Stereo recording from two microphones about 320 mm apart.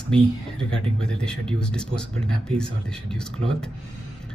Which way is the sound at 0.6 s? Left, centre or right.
Centre.